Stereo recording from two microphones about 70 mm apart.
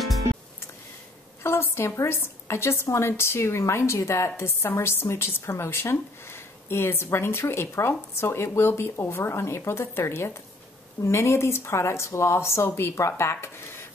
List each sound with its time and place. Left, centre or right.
1.4 s a woman's voice: left